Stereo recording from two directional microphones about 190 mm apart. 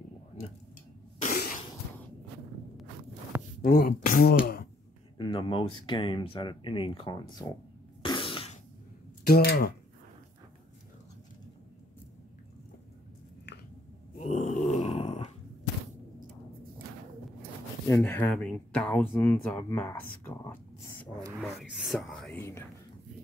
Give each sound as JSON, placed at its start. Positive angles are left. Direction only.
{"t": 1.2, "sound": "cough", "side_deg": 50}
{"t": 3.6, "sound": "speech", "side_deg": 55}
{"t": 5.1, "sound": "speech", "side_deg": 25}
{"t": 8.0, "sound": "cough", "side_deg": 25}
{"t": 9.2, "sound": "speech", "side_deg": 55}
{"t": 14.1, "sound": "grunt", "side_deg": 35}
{"t": 17.8, "sound": "speech", "side_deg": 15}
{"t": 20.8, "sound": "a sound", "side_deg": 15}
{"t": 21.4, "sound": "speech", "side_deg": 0}